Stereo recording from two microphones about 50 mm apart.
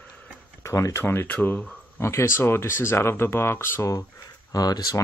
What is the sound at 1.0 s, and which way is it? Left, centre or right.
Speech, left.